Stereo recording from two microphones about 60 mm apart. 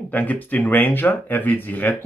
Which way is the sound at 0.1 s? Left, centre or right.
Left.